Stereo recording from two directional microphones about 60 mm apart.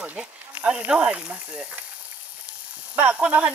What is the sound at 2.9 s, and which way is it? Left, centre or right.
Speech, right.